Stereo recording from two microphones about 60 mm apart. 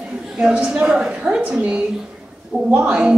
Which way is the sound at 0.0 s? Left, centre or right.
Centre.